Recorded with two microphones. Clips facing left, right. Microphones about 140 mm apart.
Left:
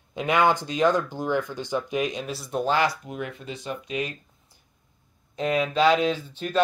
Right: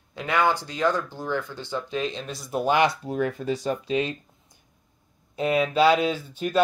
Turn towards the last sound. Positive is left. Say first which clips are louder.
# right 1 dB
turn(degrees=-10)  # may be behind; listen again after turning